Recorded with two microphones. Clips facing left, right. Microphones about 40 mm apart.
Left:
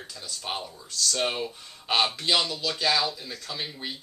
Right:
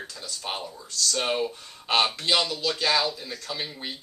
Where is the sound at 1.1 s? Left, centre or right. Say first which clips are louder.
Right 2 dB; centre.